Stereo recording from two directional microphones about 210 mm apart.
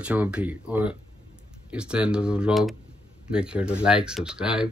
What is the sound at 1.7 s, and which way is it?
Speech, 5° right (ahead or behind).